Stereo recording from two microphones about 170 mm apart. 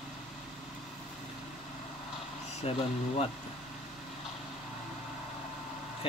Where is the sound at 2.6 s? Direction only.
35° left (ahead or behind).